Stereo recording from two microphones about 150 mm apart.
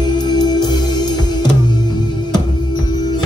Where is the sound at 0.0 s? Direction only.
30° left (ahead or behind).